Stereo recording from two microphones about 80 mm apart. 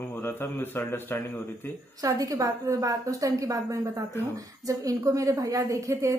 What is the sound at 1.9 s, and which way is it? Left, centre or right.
A woman's voice, right.